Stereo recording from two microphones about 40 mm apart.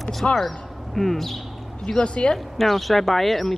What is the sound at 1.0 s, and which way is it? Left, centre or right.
Speech, centre.